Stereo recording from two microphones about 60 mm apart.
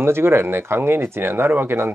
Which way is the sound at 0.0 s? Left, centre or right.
Right.